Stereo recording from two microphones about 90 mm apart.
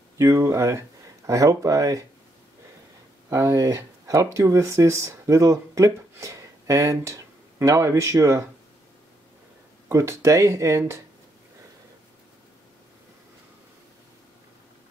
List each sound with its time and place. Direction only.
0.2 s speech: 35° right (ahead or behind)
3.3 s speech: 35° right (ahead or behind)
9.8 s speech: 35° right (ahead or behind)